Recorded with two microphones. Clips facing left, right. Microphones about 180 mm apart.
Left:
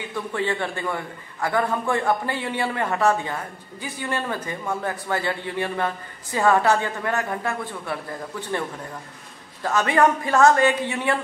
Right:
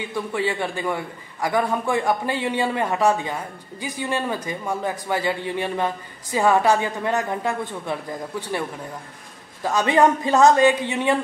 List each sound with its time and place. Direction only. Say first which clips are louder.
0.1 s a man's voice: even; 10° right (ahead or behind)